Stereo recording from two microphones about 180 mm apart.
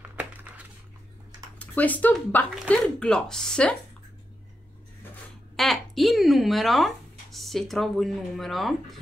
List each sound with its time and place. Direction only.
0.1 s crumpling: 10° right (ahead or behind)
1.6 s speech: 10° left (ahead or behind)
5.6 s speech: centre (ahead or behind)